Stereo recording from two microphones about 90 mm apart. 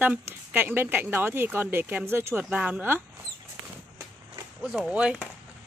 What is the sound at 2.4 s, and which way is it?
Speech, 15° right (ahead or behind).